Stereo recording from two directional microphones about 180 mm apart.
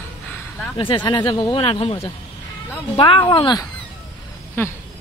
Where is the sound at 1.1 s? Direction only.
25° left (ahead or behind).